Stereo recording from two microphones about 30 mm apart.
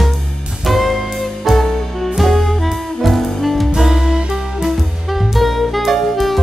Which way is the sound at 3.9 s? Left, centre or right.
Right.